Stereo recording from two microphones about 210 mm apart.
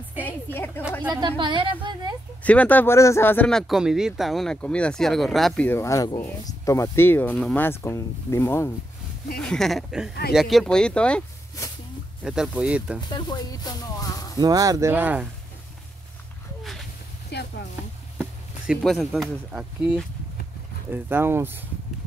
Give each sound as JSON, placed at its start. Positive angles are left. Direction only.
{"t": 0.2, "sound": "a sound", "side_deg": 10}
{"t": 1.1, "sound": "a woman's voice", "side_deg": -20}
{"t": 2.4, "sound": "speech", "side_deg": 5}
{"t": 12.2, "sound": "speech", "side_deg": -5}
{"t": 13.1, "sound": "speech", "side_deg": 20}
{"t": 14.3, "sound": "speech", "side_deg": -20}
{"t": 17.3, "sound": "a sound", "side_deg": 50}
{"t": 18.1, "sound": "speech", "side_deg": 0}